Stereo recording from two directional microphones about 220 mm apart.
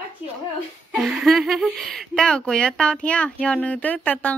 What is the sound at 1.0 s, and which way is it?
Speech, centre (ahead or behind).